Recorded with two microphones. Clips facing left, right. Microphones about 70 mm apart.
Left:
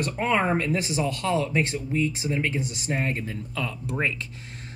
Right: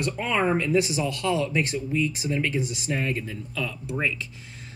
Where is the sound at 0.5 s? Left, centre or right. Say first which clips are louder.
Right 2 dB; left.